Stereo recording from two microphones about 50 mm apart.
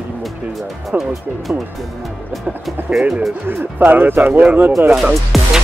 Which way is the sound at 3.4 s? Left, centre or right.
Right.